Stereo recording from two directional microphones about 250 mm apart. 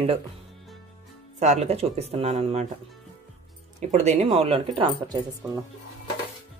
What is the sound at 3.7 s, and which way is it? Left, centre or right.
Speech, right.